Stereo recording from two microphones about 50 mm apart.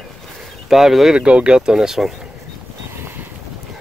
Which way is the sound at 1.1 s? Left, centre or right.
Right.